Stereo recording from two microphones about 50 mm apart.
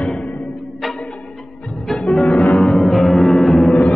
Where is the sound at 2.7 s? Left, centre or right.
Centre.